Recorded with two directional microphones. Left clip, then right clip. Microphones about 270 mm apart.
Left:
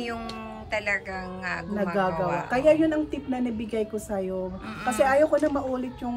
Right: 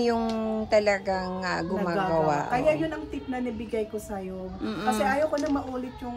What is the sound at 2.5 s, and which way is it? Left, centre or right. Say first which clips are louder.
A woman's voice: left 4 dB; left.